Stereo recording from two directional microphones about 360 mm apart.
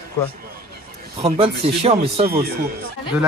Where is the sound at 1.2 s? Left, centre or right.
Centre.